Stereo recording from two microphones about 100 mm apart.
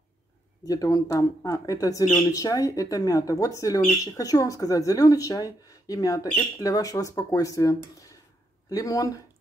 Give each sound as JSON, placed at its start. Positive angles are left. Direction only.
{"t": 0.7, "sound": "speech", "side_deg": 35}